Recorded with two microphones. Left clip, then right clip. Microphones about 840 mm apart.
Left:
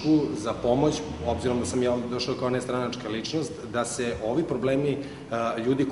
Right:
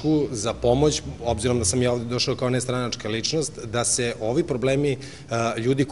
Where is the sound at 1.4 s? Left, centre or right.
Right.